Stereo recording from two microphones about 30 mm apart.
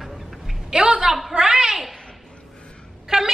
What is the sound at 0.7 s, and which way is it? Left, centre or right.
A woman's voice, right.